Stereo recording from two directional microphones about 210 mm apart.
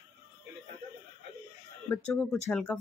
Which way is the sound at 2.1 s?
10° left (ahead or behind).